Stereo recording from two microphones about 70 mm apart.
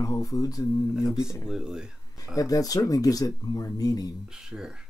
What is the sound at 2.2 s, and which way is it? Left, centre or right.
Speech, left.